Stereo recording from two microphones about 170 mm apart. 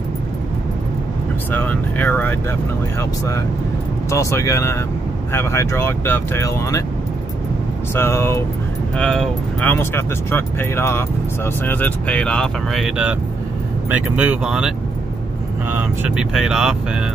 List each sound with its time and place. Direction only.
1.5 s speech: 10° left (ahead or behind)
7.9 s speech: 15° left (ahead or behind)
8.9 s speech: 5° left (ahead or behind)
15.7 s speech: 10° right (ahead or behind)